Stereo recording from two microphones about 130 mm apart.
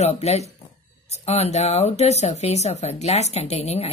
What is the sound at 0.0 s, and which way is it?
A woman's voice, 55° left (ahead or behind).